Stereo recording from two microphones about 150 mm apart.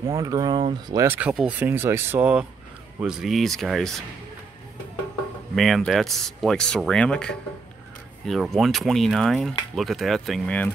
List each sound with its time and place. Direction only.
0.0 s speech: 20° right (ahead or behind); by 3.9 s centre (ahead or behind)
5.5 s speech: centre (ahead or behind)